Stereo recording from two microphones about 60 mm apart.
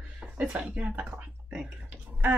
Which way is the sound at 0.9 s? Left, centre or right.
Right.